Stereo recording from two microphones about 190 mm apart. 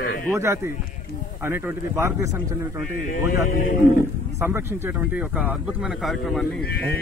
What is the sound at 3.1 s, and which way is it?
Speech, 45° left (ahead or behind).